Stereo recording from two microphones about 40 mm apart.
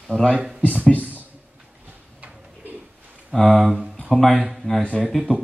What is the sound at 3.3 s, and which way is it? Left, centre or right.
Speech, centre.